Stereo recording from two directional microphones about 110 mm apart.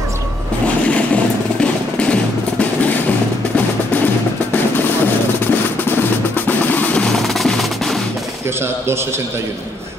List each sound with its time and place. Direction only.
0.8 s vehicle: 10° left (ahead or behind)
3.5 s music: 15° left (ahead or behind)
4.7 s percussion: 20° left (ahead or behind); by 8.0 s centre (ahead or behind)